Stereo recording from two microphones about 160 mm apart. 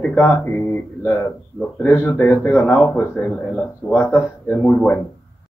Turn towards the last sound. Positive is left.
turn(degrees=5)  # may be behind; listen again after turning